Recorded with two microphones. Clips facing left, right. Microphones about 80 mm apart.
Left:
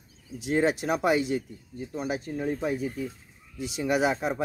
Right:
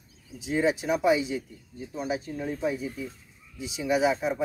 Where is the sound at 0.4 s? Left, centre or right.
Left.